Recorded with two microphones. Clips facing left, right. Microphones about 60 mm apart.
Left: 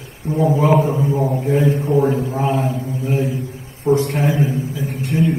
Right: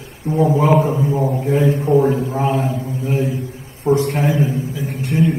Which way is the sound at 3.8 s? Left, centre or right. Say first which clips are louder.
Even; right.